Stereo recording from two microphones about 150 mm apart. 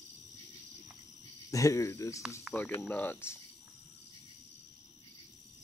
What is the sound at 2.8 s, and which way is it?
Speech, 10° left (ahead or behind).